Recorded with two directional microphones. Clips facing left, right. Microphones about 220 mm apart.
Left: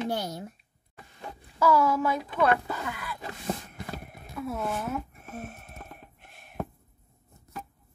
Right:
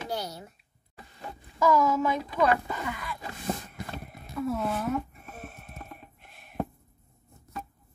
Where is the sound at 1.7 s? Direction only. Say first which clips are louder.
Even; 10° left (ahead or behind).